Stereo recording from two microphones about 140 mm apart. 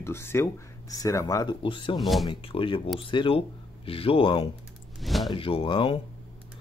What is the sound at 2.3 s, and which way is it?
Speech, 40° left (ahead or behind).